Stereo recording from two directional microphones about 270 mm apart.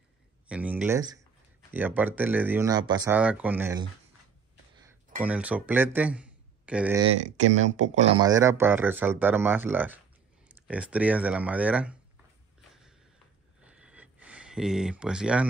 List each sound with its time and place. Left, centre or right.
0.5 s speech: centre
5.2 s speech: centre
7.6 s speech: right
8.2 s speech: centre
13.6 s a sound: centre